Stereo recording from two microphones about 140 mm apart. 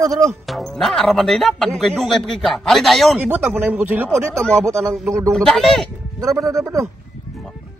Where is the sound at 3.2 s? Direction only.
10° right (ahead or behind).